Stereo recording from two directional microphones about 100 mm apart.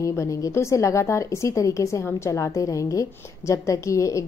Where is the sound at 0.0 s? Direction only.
30° left (ahead or behind).